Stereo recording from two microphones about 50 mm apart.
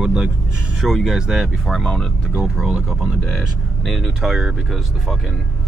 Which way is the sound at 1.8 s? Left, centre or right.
Centre.